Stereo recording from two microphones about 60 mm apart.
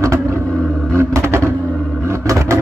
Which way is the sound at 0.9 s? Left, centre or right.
Right.